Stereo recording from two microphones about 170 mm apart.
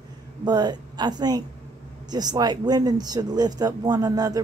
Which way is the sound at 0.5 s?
25° right (ahead or behind).